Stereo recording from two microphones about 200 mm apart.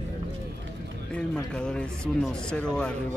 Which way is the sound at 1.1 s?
5° left (ahead or behind).